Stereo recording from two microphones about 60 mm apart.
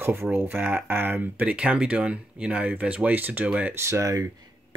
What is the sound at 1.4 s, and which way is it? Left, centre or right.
Speech, right.